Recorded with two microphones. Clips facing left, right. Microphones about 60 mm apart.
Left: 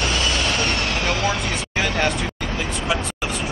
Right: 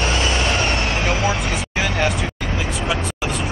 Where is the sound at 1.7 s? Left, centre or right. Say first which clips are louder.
Even; centre.